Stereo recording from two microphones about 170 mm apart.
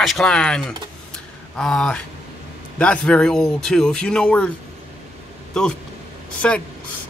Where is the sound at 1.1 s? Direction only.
5° left (ahead or behind).